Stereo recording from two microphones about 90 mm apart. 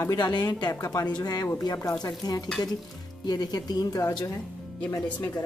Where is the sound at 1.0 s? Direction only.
45° left (ahead or behind).